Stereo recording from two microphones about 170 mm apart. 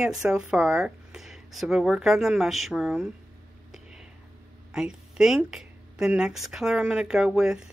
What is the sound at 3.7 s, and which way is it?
Whispering, 5° right (ahead or behind).